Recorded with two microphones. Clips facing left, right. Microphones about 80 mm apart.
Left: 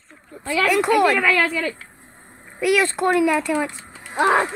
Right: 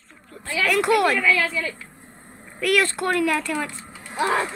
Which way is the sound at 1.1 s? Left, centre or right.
Left.